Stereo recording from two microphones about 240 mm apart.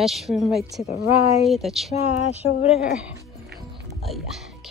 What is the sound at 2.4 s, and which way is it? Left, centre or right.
Speech, left.